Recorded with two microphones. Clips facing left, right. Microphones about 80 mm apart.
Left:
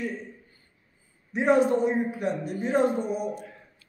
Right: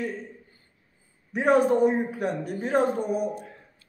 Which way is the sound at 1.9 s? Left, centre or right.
Right.